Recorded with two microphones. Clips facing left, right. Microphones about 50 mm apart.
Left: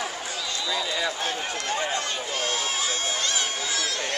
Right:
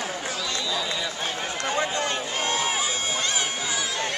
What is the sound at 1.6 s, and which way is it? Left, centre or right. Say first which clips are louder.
Run: right 3 dB; centre.